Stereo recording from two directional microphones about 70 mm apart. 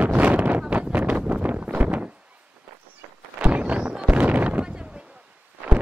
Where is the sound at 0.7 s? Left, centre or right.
Centre.